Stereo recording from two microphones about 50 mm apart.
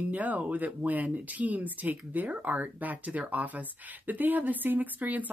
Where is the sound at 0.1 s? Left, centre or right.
Right.